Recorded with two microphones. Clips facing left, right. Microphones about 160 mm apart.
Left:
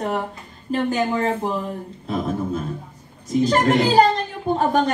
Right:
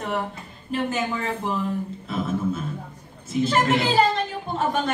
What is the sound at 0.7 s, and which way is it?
Speech, 35° left (ahead or behind).